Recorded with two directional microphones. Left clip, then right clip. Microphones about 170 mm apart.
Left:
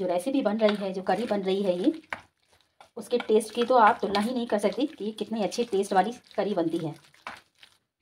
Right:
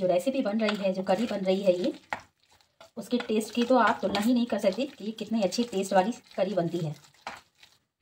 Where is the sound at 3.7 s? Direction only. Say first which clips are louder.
Left 3 dB; 75° left (ahead or behind).